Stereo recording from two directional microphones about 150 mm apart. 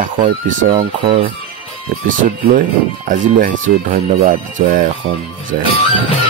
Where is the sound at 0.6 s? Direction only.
35° right (ahead or behind).